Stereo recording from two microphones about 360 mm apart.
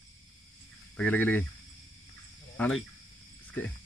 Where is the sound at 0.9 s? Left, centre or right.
Centre.